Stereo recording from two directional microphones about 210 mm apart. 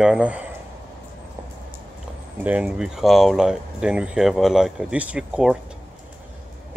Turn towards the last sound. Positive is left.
turn(degrees=-5)  # may be behind; listen again after turning